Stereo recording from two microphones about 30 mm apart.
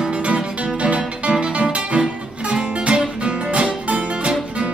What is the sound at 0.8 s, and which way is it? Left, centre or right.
Music, right.